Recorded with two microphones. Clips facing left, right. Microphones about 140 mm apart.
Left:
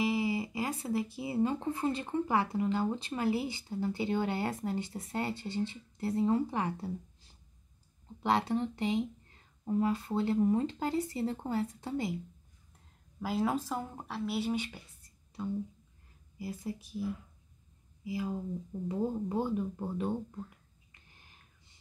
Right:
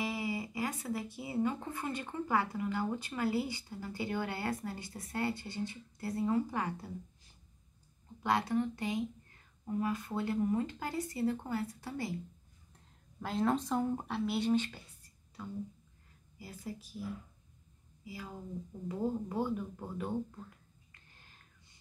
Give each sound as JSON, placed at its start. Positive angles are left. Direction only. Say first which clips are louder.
{"t": 0.0, "sound": "speech", "louder": "left 6 dB", "side_deg": 20}
{"t": 8.2, "sound": "speech", "louder": "left 2 dB", "side_deg": 25}
{"t": 13.2, "sound": "speech", "louder": "even", "side_deg": 5}
{"t": 15.4, "sound": "a woman's voice", "louder": "left 6 dB", "side_deg": 25}
{"t": 18.9, "sound": "speech", "louder": "left 2 dB", "side_deg": 25}